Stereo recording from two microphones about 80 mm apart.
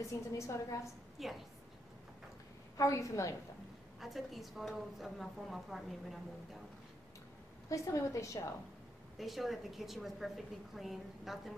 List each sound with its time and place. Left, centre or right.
0.1 s a woman's voice: left
1.2 s a woman's voice: centre
2.8 s a woman's voice: left
4.0 s a woman's voice: centre
7.7 s a woman's voice: left
9.2 s a woman's voice: centre